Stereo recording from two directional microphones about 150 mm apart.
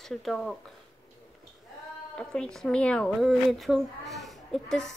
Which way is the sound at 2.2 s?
5° left (ahead or behind).